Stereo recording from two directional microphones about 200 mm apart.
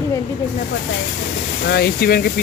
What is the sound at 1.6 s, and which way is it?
Speech, 55° left (ahead or behind).